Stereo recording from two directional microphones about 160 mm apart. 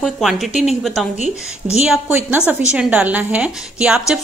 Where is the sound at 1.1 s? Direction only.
45° left (ahead or behind).